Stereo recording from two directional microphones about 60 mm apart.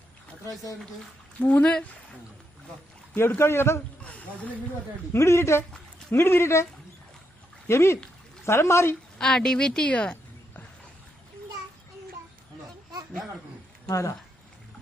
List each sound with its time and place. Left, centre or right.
1.4 s speech: left
3.3 s speech: left
5.1 s speech: left
9.2 s a woman's voice: centre
13.8 s speech: left